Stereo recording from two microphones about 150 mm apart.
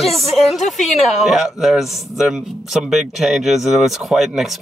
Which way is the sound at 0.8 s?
45° left (ahead or behind).